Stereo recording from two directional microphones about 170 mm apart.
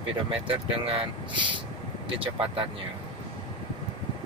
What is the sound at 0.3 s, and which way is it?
Speech, 35° right (ahead or behind).